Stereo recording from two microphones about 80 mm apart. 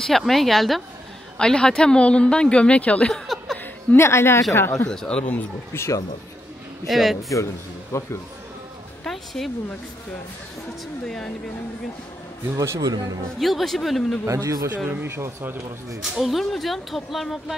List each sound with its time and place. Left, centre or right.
0.0 s a woman's voice: centre
3.9 s a woman's voice: left
4.8 s a woman's voice: centre
5.7 s a woman's voice: left
6.9 s speech: centre
7.2 s a woman's voice: left
9.0 s speech: centre
11.1 s a woman's voice: centre
12.5 s a man's voice: right
13.4 s speech: centre
14.2 s a man's voice: right
14.9 s speech: right
16.0 s speech: centre